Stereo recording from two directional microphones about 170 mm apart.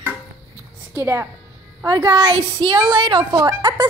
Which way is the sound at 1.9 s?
25° right (ahead or behind).